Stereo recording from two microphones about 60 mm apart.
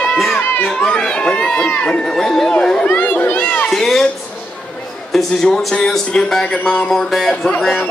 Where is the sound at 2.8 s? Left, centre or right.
Left.